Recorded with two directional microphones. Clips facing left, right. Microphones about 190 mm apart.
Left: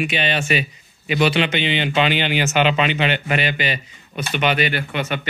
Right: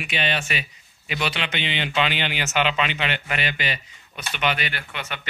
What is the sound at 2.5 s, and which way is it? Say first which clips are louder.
Speech: left 4 dB; 40° left (ahead or behind).